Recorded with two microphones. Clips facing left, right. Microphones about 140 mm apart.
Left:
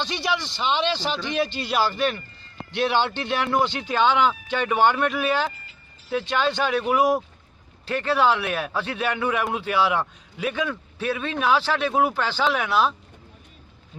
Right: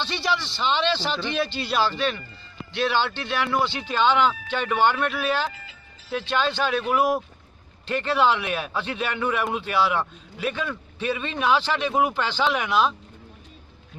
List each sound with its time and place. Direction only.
0.0 s a man's voice: 10° left (ahead or behind)